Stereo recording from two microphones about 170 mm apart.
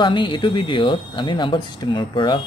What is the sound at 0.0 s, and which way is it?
Speech, 30° left (ahead or behind).